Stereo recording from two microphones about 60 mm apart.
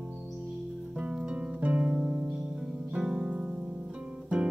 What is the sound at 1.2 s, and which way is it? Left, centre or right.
Music, centre.